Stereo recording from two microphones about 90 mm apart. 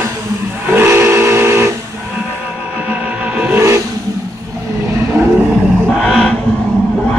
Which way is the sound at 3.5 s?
30° right (ahead or behind).